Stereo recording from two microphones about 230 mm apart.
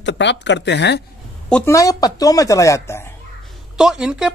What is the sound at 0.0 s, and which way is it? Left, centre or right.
Speech, left.